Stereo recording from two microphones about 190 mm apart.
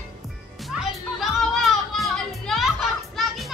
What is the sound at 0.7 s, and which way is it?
Music, 5° right (ahead or behind).